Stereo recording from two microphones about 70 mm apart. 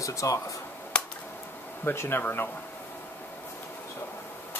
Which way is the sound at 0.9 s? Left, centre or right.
Centre.